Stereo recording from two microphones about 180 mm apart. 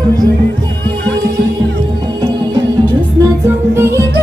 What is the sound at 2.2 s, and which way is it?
Music, 25° right (ahead or behind).